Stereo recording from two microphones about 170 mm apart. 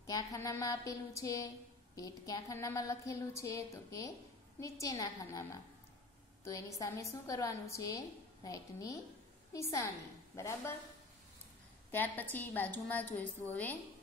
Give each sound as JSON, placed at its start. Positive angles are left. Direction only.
{"t": 0.0, "sound": "a woman's voice", "side_deg": 20}
{"t": 11.9, "sound": "a woman's voice", "side_deg": 10}